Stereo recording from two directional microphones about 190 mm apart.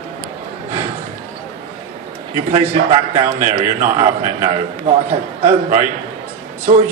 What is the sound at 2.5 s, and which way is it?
A man's voice, 40° right (ahead or behind).